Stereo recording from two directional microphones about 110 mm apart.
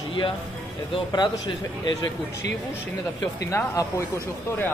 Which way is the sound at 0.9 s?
45° left (ahead or behind).